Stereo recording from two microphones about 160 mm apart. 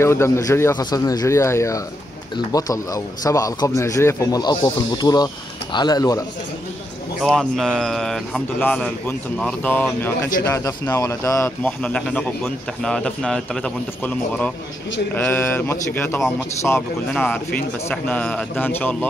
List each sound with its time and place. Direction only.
0.0 s speech: 15° left (ahead or behind)
7.2 s a man's voice: 5° left (ahead or behind); by 11.7 s 20° left (ahead or behind)
11.8 s a man's voice: 5° left (ahead or behind)